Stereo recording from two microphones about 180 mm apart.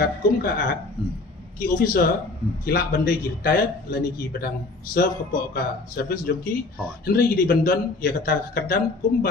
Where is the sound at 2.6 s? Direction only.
55° left (ahead or behind).